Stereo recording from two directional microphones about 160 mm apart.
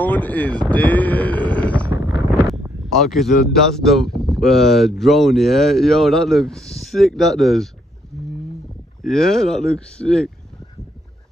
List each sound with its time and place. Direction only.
0.0 s speech: 10° left (ahead or behind)
1.9 s wind noise: 15° right (ahead or behind)
2.4 s speech: centre (ahead or behind)
9.0 s speech: centre (ahead or behind)